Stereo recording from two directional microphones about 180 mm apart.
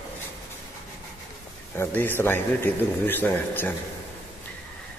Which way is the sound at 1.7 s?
10° left (ahead or behind).